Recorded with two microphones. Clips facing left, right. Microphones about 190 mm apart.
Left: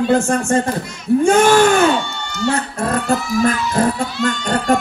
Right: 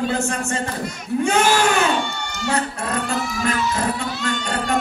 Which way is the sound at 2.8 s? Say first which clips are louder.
Left 5 dB; 45° left (ahead or behind).